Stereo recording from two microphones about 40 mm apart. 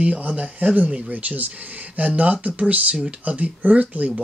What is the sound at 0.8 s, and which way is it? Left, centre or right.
Speech, right.